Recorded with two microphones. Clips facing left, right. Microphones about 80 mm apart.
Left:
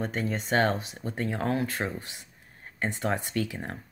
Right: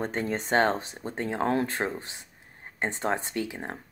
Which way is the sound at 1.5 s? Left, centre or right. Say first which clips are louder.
Right 2 dB; right.